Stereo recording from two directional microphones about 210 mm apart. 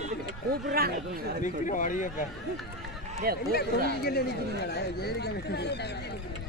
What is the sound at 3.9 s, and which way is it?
Speech, 50° left (ahead or behind).